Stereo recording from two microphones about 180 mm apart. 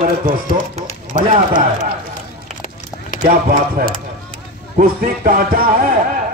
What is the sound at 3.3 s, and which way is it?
Speech, 50° right (ahead or behind).